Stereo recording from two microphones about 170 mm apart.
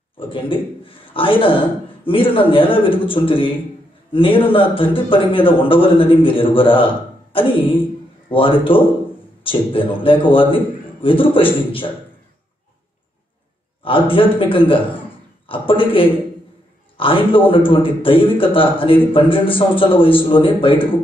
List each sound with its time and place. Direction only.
0.2 s a man's voice: 30° left (ahead or behind)
13.8 s a man's voice: 30° left (ahead or behind)